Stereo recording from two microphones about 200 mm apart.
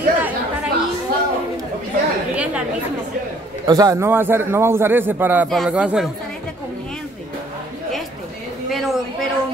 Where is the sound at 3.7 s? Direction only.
15° right (ahead or behind).